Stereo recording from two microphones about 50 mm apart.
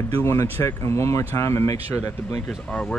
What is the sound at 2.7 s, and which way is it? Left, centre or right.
Speech, left.